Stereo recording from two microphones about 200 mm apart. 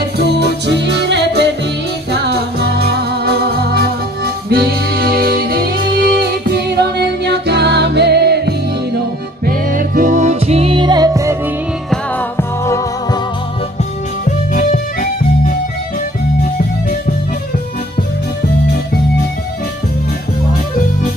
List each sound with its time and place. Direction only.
0.3 s music: 60° right (ahead or behind)
9.5 s music: 45° right (ahead or behind); by 11.3 s 20° right (ahead or behind)
11.9 s music: 15° left (ahead or behind)
14.2 s music: 40° left (ahead or behind)